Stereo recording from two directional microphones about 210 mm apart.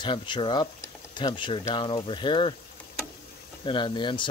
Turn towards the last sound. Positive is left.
turn(degrees=20)  # may be behind; listen again after turning